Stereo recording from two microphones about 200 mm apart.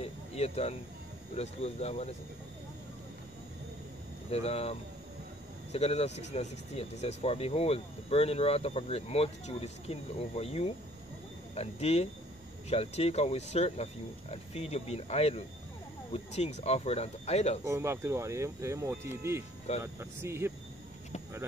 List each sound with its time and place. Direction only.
0.0 s a sound: 30° left (ahead or behind)
1.3 s speech: 30° left (ahead or behind)
4.3 s speech: 30° left (ahead or behind)
17.6 s speech: 15° right (ahead or behind)